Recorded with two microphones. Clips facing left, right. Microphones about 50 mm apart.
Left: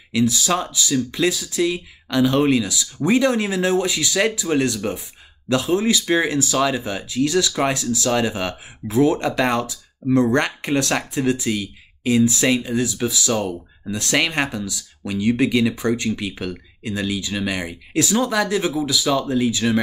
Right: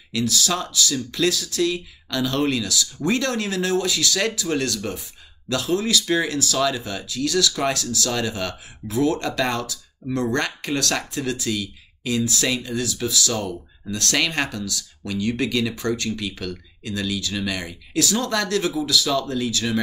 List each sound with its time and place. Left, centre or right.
0.1 s speech: left